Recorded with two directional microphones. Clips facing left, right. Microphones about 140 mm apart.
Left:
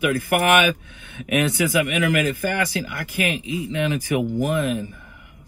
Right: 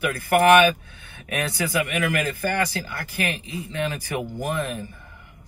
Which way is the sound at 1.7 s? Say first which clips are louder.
Left 4 dB; 15° left (ahead or behind).